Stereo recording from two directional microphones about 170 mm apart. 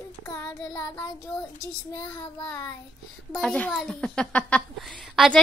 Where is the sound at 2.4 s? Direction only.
10° left (ahead or behind).